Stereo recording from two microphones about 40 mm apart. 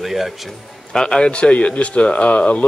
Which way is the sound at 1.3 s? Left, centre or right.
Left.